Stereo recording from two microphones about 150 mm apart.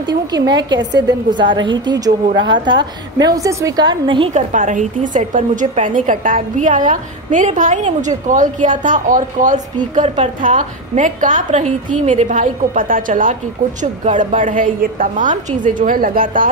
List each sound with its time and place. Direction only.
0.3 s a woman's voice: 30° right (ahead or behind)
4.3 s a woman's voice: 55° right (ahead or behind)